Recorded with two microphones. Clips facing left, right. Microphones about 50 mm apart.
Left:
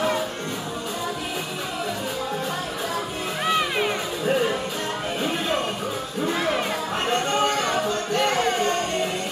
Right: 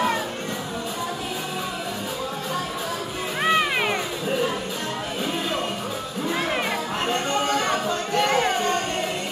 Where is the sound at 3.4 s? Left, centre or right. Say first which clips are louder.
Right 2 dB; right.